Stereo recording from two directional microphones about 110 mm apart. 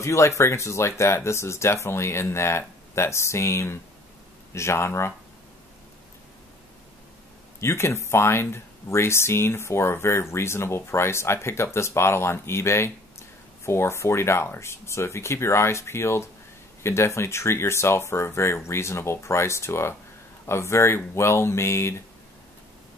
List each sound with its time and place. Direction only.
0.0 s speech: 25° left (ahead or behind)
7.6 s speech: 25° left (ahead or behind)